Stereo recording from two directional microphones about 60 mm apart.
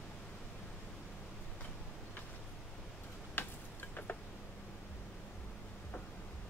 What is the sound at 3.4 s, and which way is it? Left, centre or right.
Tick-tock, left.